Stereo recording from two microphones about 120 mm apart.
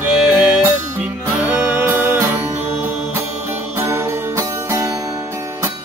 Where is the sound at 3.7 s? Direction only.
20° right (ahead or behind).